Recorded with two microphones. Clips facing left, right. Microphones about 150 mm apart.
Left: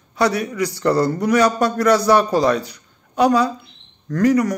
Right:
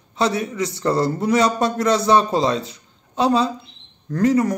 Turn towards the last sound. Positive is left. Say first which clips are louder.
# left 1 dB
turn(degrees=-25)  # may be behind; listen again after turning